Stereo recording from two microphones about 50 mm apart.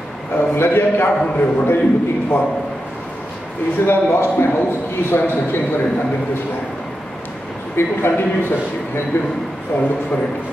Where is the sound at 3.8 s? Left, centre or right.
Left.